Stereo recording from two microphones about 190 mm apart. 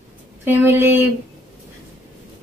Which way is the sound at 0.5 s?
10° right (ahead or behind).